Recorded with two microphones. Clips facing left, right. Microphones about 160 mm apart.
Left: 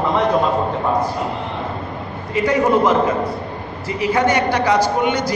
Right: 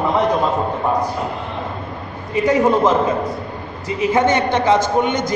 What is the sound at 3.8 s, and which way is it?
Speech, 20° right (ahead or behind).